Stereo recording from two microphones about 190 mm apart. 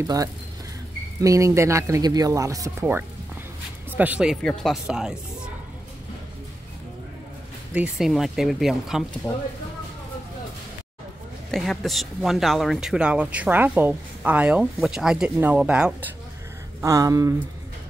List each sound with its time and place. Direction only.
0.0 s speech: 20° right (ahead or behind); by 5.1 s 5° right (ahead or behind)
7.7 s speech: 5° right (ahead or behind)
11.5 s speech: centre (ahead or behind)
16.8 s speech: 20° right (ahead or behind)